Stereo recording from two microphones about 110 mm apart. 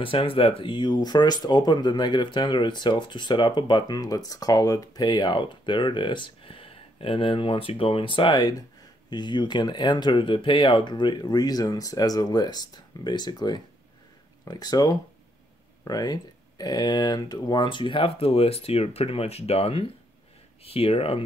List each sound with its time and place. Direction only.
0.0 s speech: 55° left (ahead or behind)